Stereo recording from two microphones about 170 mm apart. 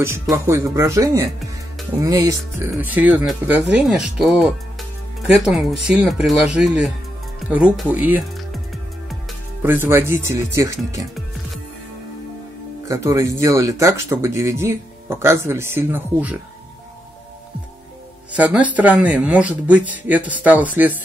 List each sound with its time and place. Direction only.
0.0 s speech: 15° right (ahead or behind)
9.6 s speech: 15° right (ahead or behind)
12.8 s speech: 20° right (ahead or behind)
18.3 s speech: 5° right (ahead or behind)